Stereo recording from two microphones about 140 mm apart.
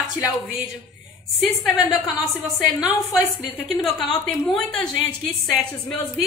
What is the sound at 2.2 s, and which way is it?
A woman's voice, centre (ahead or behind).